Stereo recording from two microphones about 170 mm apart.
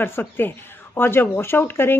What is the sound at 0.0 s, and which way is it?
Speech, 10° left (ahead or behind).